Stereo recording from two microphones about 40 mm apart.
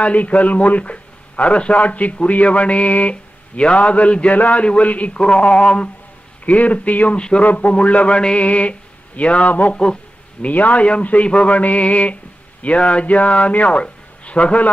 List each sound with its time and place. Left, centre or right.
0.0 s a man's voice: left
5.2 s speech: left
6.4 s a man's voice: left
7.2 s speech: left
7.4 s a man's voice: left
8.4 s mantra: left
9.5 s a man's voice: left